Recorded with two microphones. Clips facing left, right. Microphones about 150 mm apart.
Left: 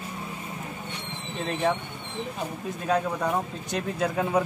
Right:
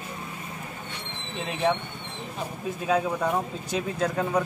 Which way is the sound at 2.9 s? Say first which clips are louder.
Right 1 dB; 5° right (ahead or behind).